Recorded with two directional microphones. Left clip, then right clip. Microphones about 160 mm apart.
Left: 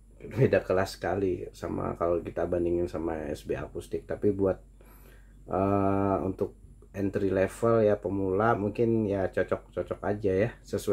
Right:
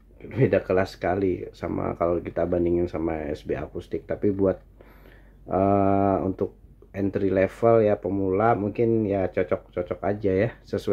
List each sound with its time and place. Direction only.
0.3 s speech: 35° right (ahead or behind)